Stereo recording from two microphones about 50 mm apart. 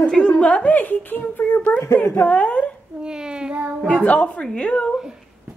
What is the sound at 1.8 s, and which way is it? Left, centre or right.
Speech, left.